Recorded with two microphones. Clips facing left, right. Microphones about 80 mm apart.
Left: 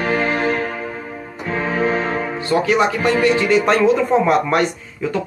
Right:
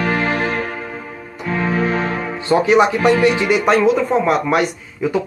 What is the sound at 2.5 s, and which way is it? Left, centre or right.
Speech, right.